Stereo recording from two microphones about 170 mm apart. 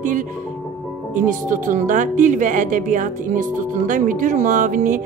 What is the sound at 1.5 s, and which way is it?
Speech, 50° right (ahead or behind).